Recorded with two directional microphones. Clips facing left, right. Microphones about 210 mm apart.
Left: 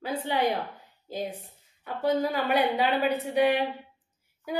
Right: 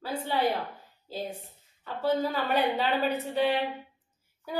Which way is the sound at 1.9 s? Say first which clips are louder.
Left 2 dB; 15° left (ahead or behind).